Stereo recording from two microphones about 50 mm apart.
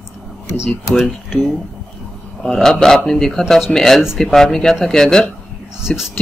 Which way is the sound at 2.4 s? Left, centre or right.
Centre.